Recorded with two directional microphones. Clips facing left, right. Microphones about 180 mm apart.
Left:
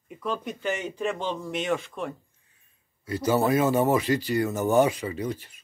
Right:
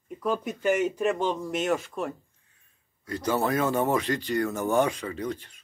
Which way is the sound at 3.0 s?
5° left (ahead or behind).